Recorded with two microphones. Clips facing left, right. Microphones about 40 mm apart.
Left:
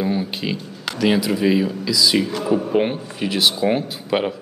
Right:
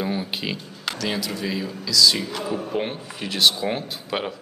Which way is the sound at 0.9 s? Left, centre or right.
Centre.